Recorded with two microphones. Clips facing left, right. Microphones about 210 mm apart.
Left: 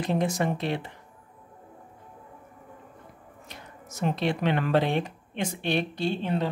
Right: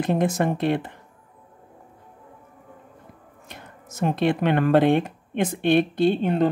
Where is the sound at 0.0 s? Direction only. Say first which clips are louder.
Right 4 dB; 55° right (ahead or behind).